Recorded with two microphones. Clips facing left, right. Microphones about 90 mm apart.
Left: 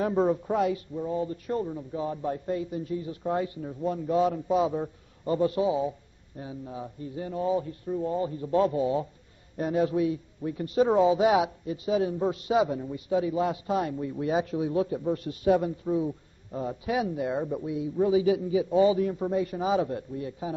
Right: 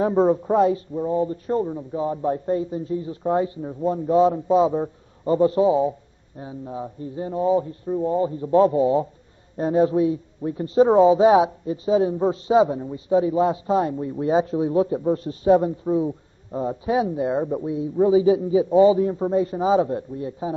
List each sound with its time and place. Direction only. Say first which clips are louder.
0.0 s a man's voice: right 6 dB; 30° right (ahead or behind)